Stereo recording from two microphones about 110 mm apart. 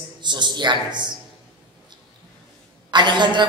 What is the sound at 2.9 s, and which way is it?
Speech, 45° right (ahead or behind).